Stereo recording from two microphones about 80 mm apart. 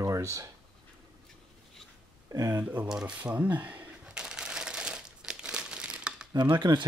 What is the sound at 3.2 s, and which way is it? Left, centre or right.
Shuffling cards, centre.